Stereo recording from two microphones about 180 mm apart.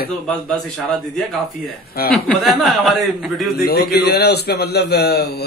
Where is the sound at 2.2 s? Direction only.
Centre (ahead or behind).